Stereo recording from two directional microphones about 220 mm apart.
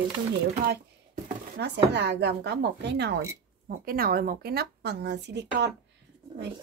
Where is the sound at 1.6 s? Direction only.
50° right (ahead or behind).